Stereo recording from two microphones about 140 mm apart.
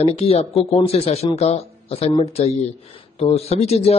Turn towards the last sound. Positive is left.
turn(degrees=50)  # may be behind; listen again after turning